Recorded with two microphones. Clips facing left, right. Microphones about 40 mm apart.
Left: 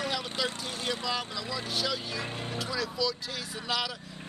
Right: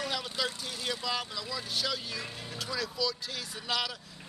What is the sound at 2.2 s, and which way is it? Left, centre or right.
Speech, left.